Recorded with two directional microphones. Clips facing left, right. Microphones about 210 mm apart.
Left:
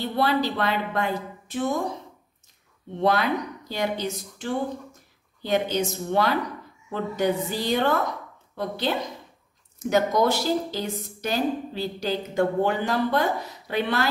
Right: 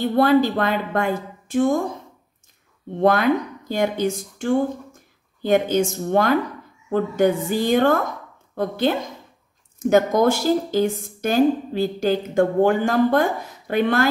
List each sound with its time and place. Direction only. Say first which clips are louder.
0.0 s speech: right 7 dB; 50° right (ahead or behind)
3.0 s speech: right 5 dB; 50° right (ahead or behind)